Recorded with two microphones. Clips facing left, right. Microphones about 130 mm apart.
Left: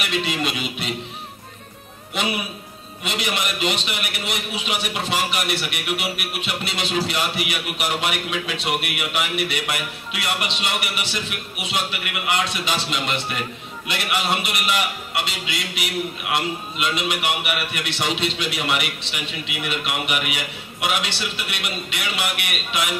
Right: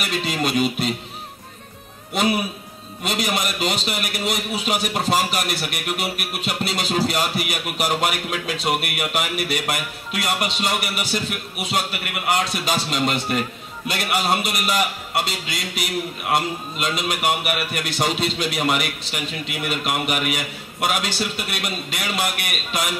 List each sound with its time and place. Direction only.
0.0 s a man's voice: 45° right (ahead or behind)
2.1 s a man's voice: 45° right (ahead or behind)